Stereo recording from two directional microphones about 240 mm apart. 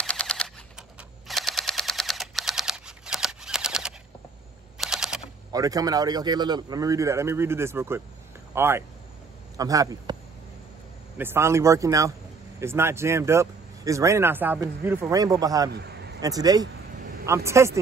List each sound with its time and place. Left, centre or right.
0.0 s typing: centre
1.2 s a sound: centre
4.7 s single-lens reflex camera: centre
5.5 s speech: centre
11.1 s speech: centre
15.7 s a sound: right
16.2 s speech: centre